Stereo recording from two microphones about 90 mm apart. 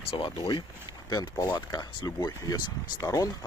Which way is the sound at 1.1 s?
45° left (ahead or behind).